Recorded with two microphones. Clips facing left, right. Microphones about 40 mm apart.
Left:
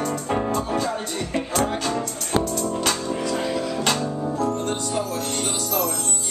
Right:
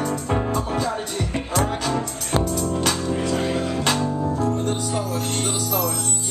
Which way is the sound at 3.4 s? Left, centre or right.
Right.